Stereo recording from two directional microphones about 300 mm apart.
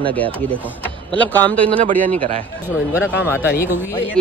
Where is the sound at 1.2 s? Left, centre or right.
Centre.